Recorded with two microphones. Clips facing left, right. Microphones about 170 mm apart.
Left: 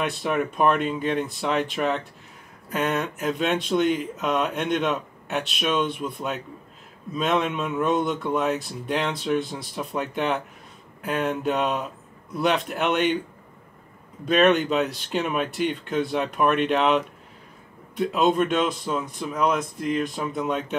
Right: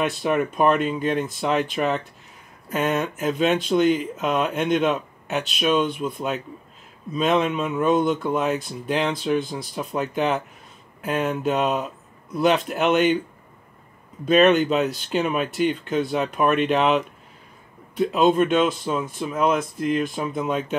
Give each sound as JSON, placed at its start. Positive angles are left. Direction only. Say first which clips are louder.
{"t": 0.0, "sound": "speech", "louder": "right 3 dB", "side_deg": 0}
{"t": 14.2, "sound": "speech", "louder": "right 3 dB", "side_deg": 0}